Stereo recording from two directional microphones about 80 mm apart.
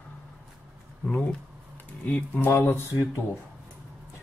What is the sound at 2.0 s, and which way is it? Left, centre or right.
Speech, left.